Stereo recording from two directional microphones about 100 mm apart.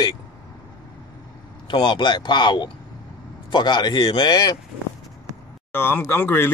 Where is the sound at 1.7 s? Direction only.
55° left (ahead or behind).